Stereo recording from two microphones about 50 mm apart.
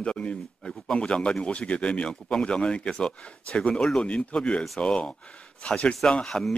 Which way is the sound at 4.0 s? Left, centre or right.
Left.